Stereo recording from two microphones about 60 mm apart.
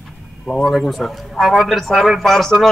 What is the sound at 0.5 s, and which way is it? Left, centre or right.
Speech, centre.